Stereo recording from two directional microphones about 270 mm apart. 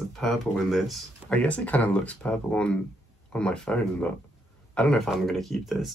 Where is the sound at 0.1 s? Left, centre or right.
Centre.